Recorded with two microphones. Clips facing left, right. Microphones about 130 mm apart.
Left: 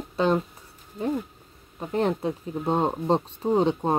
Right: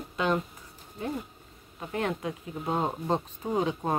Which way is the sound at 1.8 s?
30° left (ahead or behind).